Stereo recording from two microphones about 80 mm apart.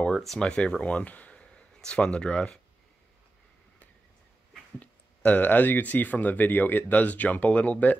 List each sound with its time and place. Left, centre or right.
0.0 s speech: centre
4.7 s speech: centre